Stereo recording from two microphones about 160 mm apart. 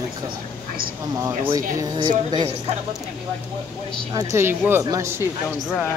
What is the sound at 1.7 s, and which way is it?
Speech, 25° right (ahead or behind).